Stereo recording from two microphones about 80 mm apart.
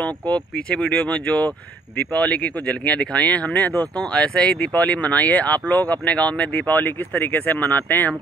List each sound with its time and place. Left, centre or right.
0.0 s speech: centre